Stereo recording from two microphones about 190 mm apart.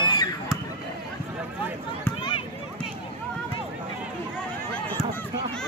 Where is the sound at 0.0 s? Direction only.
25° left (ahead or behind).